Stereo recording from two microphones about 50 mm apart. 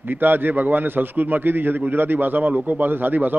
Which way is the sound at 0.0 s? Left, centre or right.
Right.